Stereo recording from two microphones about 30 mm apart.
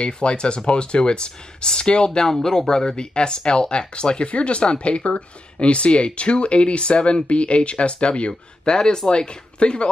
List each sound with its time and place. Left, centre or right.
0.0 s speech: left
8.3 s speech: left